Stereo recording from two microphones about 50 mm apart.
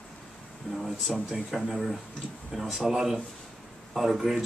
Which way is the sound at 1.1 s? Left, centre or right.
Centre.